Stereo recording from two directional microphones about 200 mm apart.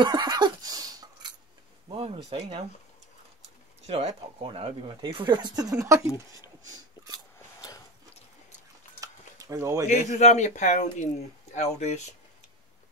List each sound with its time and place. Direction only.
0.0 s neigh: 20° right (ahead or behind)
1.9 s speech: 30° right (ahead or behind)
3.8 s speech: 35° right (ahead or behind); by 6.0 s 15° right (ahead or behind)
6.6 s a sound: 20° right (ahead or behind)
9.0 s a sound: 15° right (ahead or behind)
10.0 s speech: 35° left (ahead or behind)